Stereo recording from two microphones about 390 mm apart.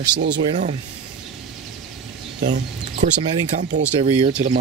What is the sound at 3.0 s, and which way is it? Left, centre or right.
Speech, centre.